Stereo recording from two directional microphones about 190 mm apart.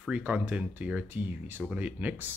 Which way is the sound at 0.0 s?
5° right (ahead or behind).